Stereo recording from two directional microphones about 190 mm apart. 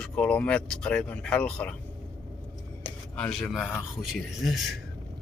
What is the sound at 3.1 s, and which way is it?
Speech, 5° left (ahead or behind).